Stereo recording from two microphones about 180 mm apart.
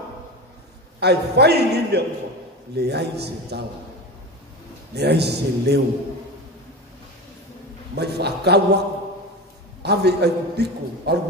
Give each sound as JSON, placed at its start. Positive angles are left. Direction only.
{"t": 0.9, "sound": "a man's voice", "side_deg": -65}
{"t": 4.9, "sound": "a man's voice", "side_deg": -65}
{"t": 7.9, "sound": "a man's voice", "side_deg": -65}
{"t": 9.8, "sound": "a man's voice", "side_deg": -65}